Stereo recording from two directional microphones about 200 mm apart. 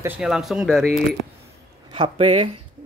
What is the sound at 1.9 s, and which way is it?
Speech, 25° right (ahead or behind).